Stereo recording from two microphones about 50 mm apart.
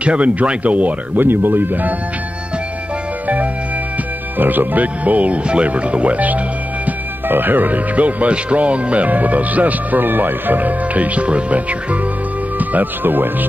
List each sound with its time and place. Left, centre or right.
0.0 s speech: right
1.2 s speech: right
4.4 s speech: right
12.5 s speech: right